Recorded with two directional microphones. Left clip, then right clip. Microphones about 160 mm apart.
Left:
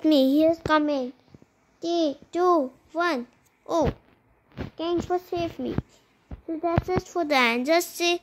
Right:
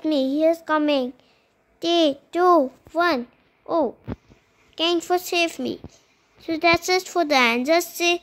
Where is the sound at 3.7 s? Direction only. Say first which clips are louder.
Right 3 dB; 5° right (ahead or behind).